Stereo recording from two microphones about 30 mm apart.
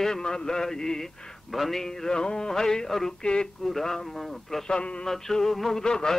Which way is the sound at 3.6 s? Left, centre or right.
Centre.